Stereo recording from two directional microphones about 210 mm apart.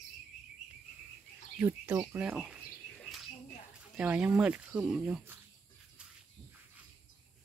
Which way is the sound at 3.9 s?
5° right (ahead or behind).